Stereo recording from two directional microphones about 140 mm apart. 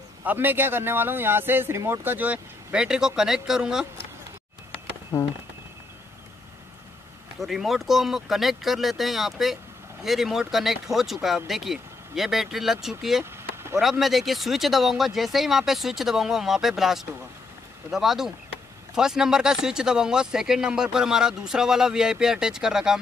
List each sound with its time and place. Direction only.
0.2 s speech: 15° right (ahead or behind)
7.3 s speech: centre (ahead or behind)
13.2 s vehicle: 20° right (ahead or behind)
13.7 s speech: centre (ahead or behind)